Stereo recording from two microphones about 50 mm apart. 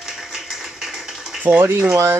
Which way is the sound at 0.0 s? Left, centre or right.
Centre.